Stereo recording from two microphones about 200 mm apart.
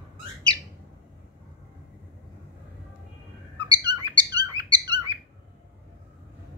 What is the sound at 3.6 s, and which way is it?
Bird, 20° right (ahead or behind).